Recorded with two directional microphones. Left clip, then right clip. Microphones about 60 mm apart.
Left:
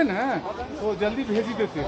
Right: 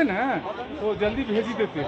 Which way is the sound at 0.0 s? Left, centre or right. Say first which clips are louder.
Even; right.